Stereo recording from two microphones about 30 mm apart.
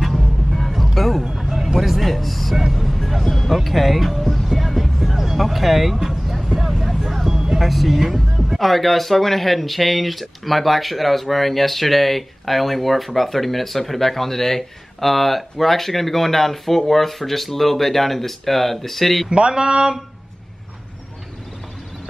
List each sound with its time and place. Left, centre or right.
0.5 s music: centre
1.2 s vehicle: centre
1.9 s speech: centre
3.3 s speech: centre
4.2 s music: centre
5.3 s speech: centre
6.0 s vehicle: centre
7.5 s speech: centre
19.2 s speech: right